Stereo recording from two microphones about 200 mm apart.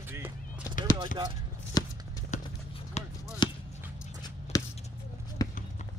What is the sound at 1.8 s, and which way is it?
Shuffling cards, 20° left (ahead or behind).